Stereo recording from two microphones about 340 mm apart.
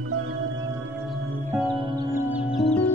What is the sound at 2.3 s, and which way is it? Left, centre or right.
Music, centre.